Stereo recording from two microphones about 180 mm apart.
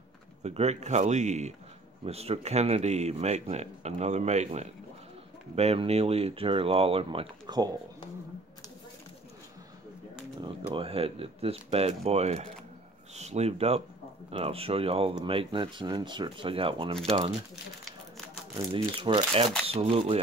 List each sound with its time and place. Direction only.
0.4 s speech: 35° right (ahead or behind)
10.4 s speech: 30° right (ahead or behind)
18.7 s speech: 25° right (ahead or behind)